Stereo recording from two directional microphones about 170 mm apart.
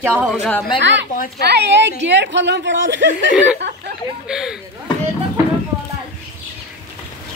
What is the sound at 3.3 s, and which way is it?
Speech, 5° right (ahead or behind).